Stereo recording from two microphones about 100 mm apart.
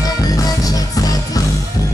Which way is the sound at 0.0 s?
35° left (ahead or behind).